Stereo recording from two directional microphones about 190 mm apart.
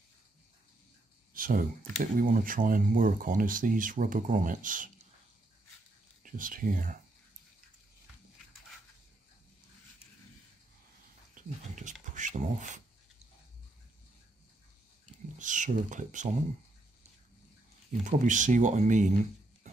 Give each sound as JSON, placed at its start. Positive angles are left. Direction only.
{"t": 1.3, "sound": "speech", "side_deg": -45}
{"t": 6.2, "sound": "speech", "side_deg": -45}
{"t": 11.3, "sound": "a sound", "side_deg": -40}
{"t": 15.3, "sound": "a sound", "side_deg": -40}
{"t": 18.0, "sound": "speech", "side_deg": -40}
{"t": 19.6, "sound": "horse", "side_deg": -35}